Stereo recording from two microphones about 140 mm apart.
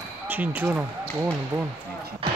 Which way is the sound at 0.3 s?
15° right (ahead or behind).